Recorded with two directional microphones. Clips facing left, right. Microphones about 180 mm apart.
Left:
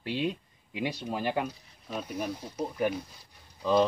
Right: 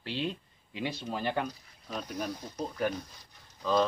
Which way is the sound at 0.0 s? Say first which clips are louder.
Left 3 dB; 10° left (ahead or behind).